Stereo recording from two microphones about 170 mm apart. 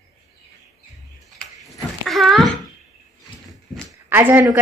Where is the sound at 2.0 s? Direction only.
Centre (ahead or behind).